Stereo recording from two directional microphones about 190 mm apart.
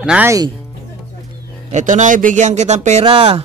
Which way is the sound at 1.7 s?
40° right (ahead or behind).